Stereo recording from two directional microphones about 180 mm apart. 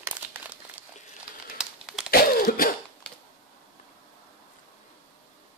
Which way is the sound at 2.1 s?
55° left (ahead or behind).